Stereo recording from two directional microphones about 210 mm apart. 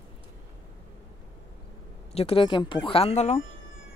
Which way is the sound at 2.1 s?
25° left (ahead or behind).